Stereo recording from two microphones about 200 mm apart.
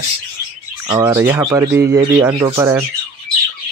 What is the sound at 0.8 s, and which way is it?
Speech, 15° right (ahead or behind).